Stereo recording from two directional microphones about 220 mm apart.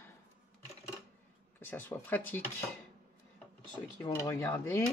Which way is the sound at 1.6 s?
10° left (ahead or behind).